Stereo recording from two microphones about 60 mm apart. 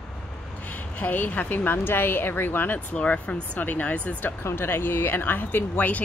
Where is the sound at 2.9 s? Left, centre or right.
Centre.